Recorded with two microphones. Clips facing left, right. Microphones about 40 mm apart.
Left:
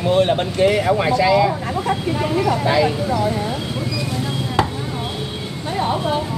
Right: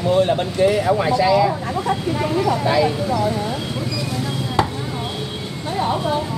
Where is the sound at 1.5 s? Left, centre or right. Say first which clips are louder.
Even; centre.